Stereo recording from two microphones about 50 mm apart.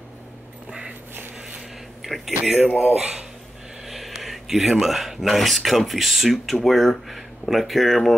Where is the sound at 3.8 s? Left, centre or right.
Centre.